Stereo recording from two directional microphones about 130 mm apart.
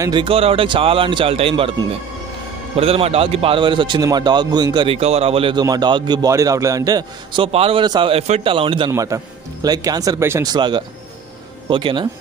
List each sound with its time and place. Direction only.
0.0 s a man's voice: 40° right (ahead or behind)
4.8 s a man's voice: 50° right (ahead or behind)
5.6 s a man's voice: 30° right (ahead or behind)
7.4 s a man's voice: 45° right (ahead or behind)
8.1 s a man's voice: 50° right (ahead or behind)
8.9 s a man's voice: 25° right (ahead or behind)
10.5 s speech: 35° right (ahead or behind)